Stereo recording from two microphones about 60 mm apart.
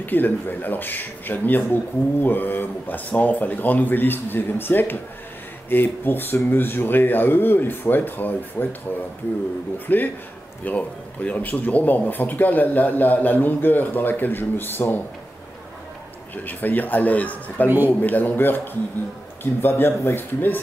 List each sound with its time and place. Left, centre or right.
0.0 s speech: left
9.9 s speech: left
16.4 s speech: left
17.6 s a man's voice: right
18.0 s speech: left